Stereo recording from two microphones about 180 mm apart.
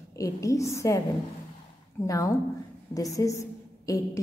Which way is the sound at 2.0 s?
15° left (ahead or behind).